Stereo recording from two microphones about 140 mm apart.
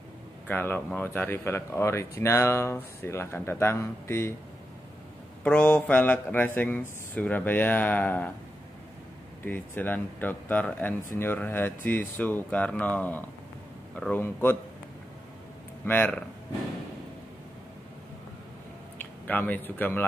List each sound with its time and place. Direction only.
0.5 s speech: 15° left (ahead or behind)
5.4 s speech: 10° left (ahead or behind)
9.4 s speech: 15° left (ahead or behind)
15.8 s speech: 10° left (ahead or behind)
19.2 s speech: 10° left (ahead or behind)